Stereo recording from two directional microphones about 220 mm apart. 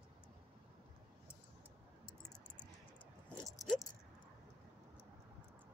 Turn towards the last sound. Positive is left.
turn(degrees=0)  # may be behind; listen again after turning